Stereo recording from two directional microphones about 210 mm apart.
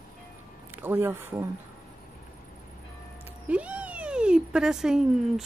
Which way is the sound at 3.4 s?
5° right (ahead or behind).